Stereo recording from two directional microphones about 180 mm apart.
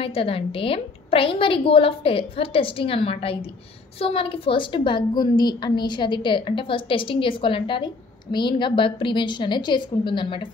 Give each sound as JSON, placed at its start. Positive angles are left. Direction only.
{"t": 0.0, "sound": "a woman's voice", "side_deg": 30}